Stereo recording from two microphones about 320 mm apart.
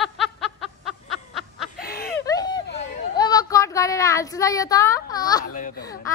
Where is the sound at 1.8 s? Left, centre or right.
Left.